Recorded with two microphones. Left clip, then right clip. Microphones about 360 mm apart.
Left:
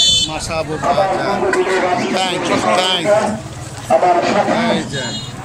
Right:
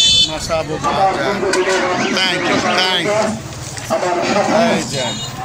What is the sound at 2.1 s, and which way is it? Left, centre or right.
Speech, centre.